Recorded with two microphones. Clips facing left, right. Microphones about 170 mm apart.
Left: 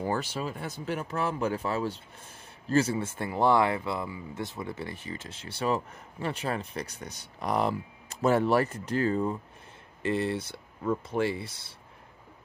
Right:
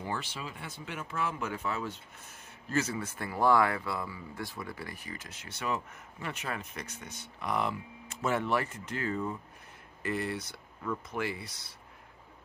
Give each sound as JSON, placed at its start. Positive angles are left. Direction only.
{"t": 0.0, "sound": "speech", "side_deg": 40}